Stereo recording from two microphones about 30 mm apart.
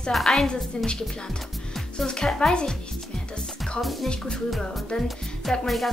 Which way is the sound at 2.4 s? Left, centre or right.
Left.